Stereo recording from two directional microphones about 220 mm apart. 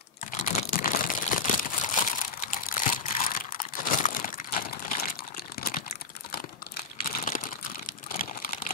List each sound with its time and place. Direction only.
0.3 s crumpling: 35° left (ahead or behind)
7.1 s crumpling: 35° left (ahead or behind)